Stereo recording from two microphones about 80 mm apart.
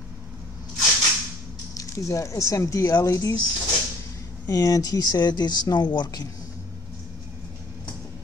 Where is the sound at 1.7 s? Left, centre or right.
Left.